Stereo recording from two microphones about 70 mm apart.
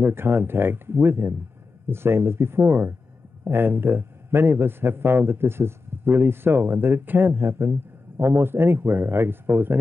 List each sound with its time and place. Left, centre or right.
0.0 s a man's voice: right